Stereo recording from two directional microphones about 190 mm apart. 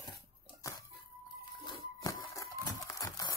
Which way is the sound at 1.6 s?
20° left (ahead or behind).